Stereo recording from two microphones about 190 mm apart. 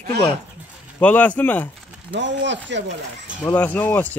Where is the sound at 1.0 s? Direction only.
10° left (ahead or behind).